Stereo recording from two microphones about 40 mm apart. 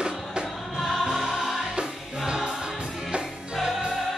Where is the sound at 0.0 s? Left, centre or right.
Right.